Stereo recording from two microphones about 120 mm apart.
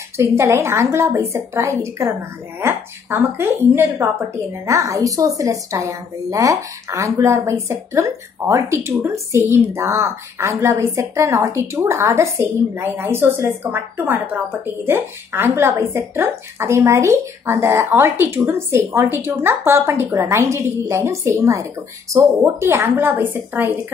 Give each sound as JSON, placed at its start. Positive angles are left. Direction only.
{"t": 0.2, "sound": "a woman's voice", "side_deg": -25}